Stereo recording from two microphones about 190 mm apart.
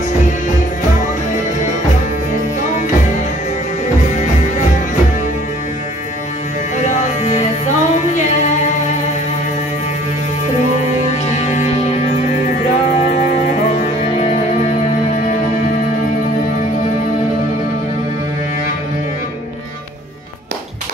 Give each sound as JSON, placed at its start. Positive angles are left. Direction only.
{"t": 6.9, "sound": "music", "side_deg": 35}
{"t": 11.2, "sound": "music", "side_deg": 40}
{"t": 13.7, "sound": "music", "side_deg": 35}